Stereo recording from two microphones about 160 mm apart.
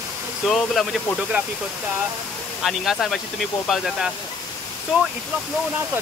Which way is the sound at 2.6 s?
Centre (ahead or behind).